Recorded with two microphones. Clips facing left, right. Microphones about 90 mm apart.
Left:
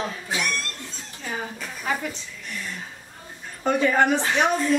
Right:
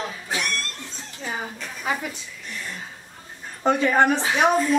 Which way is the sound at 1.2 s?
10° right (ahead or behind).